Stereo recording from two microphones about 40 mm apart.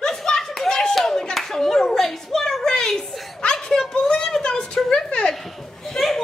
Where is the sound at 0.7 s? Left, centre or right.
Centre.